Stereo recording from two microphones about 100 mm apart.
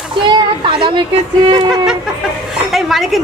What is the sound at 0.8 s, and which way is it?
Speech, 50° right (ahead or behind).